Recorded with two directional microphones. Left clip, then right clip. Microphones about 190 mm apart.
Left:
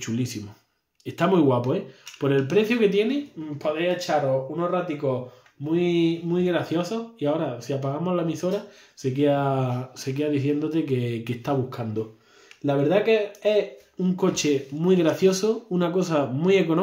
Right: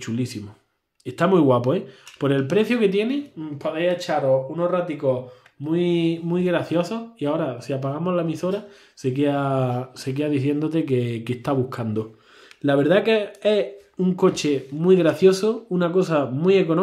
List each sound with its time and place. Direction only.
0.0 s speech: 15° right (ahead or behind)